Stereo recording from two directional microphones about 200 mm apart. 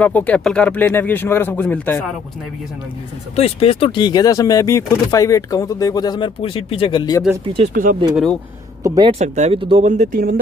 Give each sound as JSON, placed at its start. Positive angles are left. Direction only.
{"t": 0.0, "sound": "speech", "side_deg": 10}
{"t": 3.3, "sound": "speech", "side_deg": 30}
{"t": 7.7, "sound": "speech", "side_deg": -45}
{"t": 8.8, "sound": "speech", "side_deg": -20}
{"t": 9.2, "sound": "speech", "side_deg": -35}